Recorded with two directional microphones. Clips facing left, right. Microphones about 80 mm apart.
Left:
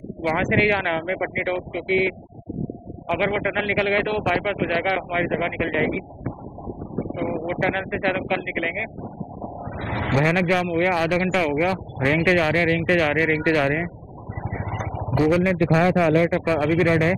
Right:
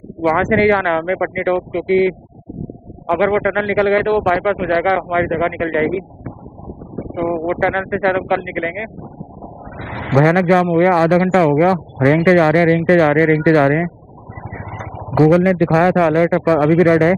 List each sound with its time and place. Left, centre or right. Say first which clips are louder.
0.2 s speech: right 7 dB; right
3.1 s speech: right 8 dB; right
7.4 s speech: right 6 dB; right
9.8 s vehicle: even; centre
10.1 s a man's voice: right 8 dB; right
10.5 s speech: right 8 dB; right
15.3 s speech: right 6 dB; right
16.6 s speech: right 8 dB; centre